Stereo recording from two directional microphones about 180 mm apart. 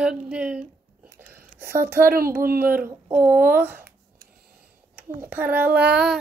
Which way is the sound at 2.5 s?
10° right (ahead or behind).